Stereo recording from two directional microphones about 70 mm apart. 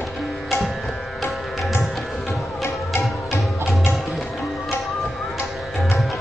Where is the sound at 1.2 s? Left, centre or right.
Centre.